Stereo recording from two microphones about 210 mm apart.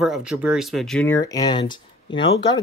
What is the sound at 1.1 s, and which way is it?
Speech, 15° left (ahead or behind).